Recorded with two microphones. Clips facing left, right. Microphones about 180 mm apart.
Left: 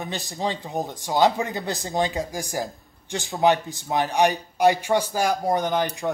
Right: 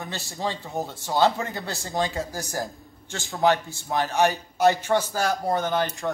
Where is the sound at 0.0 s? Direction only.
15° left (ahead or behind).